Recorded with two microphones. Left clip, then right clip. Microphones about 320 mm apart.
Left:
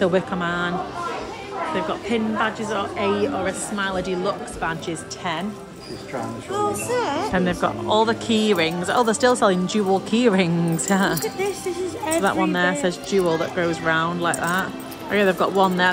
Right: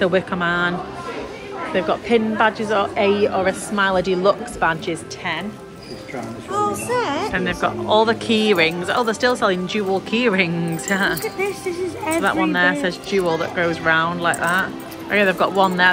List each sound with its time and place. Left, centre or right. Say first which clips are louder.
0.0 s a woman's voice: right 2 dB; centre
1.8 s a woman's voice: right 9 dB; centre
6.9 s speech: right 2 dB; right
7.2 s speech: right 1 dB; centre
12.2 s speech: right 3 dB; centre